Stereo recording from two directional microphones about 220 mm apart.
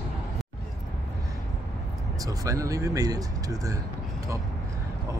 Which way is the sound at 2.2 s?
15° right (ahead or behind).